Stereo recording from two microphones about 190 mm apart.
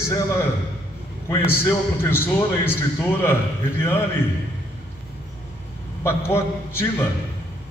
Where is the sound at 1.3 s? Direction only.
15° left (ahead or behind).